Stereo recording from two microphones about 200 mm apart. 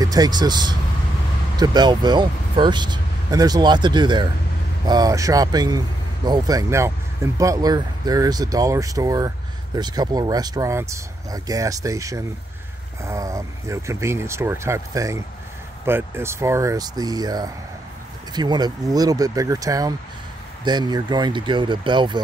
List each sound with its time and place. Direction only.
0.0 s speech: 20° right (ahead or behind)